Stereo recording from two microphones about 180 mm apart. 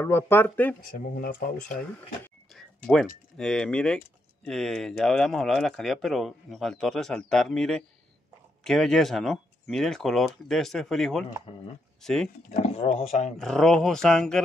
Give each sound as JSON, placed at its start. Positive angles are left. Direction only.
{"t": 0.0, "sound": "speech", "side_deg": 15}
{"t": 1.1, "sound": "speech", "side_deg": 55}
{"t": 2.5, "sound": "a sound", "side_deg": 0}
{"t": 3.3, "sound": "speech", "side_deg": 5}
{"t": 12.6, "sound": "speech", "side_deg": 35}
{"t": 13.4, "sound": "speech", "side_deg": 5}